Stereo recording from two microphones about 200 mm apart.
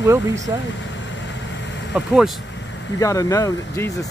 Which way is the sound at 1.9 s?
5° right (ahead or behind).